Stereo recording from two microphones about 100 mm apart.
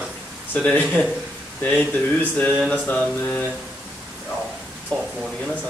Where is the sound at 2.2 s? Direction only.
15° left (ahead or behind).